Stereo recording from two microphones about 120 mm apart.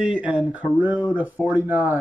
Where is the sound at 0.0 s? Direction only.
5° right (ahead or behind).